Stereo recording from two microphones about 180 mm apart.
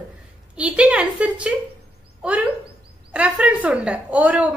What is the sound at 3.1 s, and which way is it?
A woman's voice, 5° right (ahead or behind).